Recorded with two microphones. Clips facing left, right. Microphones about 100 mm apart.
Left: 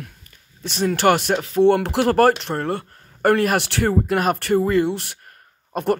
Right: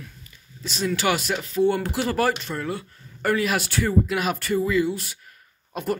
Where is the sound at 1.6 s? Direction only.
65° left (ahead or behind).